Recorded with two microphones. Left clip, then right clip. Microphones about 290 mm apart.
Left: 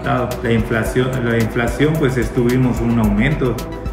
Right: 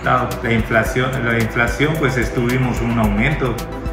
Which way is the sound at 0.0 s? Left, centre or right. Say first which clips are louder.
Right 2 dB; centre.